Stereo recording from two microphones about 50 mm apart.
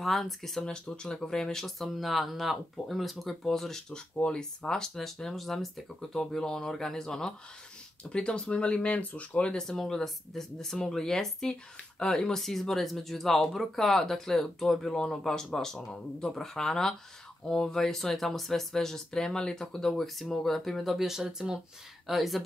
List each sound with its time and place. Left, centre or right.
0.0 s speech: centre
0.7 s speech: centre
9.6 s speech: centre